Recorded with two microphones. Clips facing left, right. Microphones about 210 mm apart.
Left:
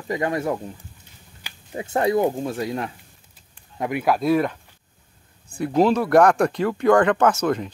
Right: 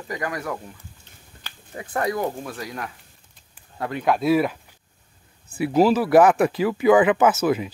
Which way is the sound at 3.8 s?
15° left (ahead or behind).